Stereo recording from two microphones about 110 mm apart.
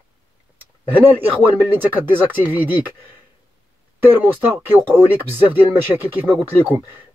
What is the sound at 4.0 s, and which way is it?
Speech, 15° right (ahead or behind).